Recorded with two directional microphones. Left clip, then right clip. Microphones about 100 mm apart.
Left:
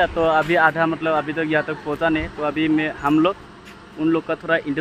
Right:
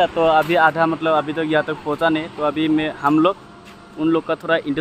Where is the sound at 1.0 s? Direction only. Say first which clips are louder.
Right 2 dB; 30° right (ahead or behind).